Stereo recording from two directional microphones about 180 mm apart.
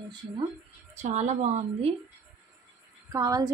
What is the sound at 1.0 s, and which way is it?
Speech, 40° right (ahead or behind).